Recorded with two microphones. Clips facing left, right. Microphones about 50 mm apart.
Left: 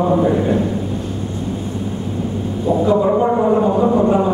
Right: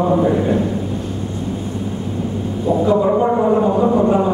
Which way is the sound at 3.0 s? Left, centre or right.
Centre.